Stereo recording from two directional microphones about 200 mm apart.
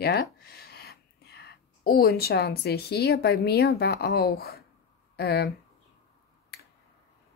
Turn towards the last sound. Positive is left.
turn(degrees=55)  # may be behind; listen again after turning